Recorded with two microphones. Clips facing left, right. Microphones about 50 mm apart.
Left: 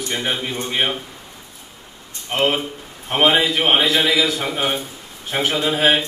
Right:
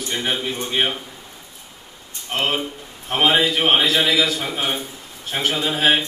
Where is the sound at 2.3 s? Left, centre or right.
Centre.